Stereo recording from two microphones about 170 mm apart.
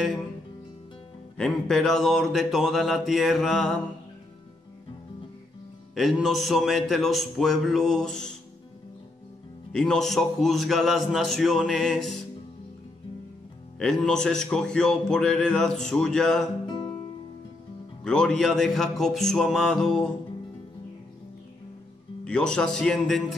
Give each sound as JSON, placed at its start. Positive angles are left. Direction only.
{"t": 1.3, "sound": "speech", "side_deg": 5}
{"t": 5.9, "sound": "speech", "side_deg": 0}
{"t": 9.7, "sound": "speech", "side_deg": 5}
{"t": 13.7, "sound": "speech", "side_deg": 5}
{"t": 16.6, "sound": "music", "side_deg": 30}
{"t": 18.0, "sound": "speech", "side_deg": 5}
{"t": 22.2, "sound": "speech", "side_deg": 5}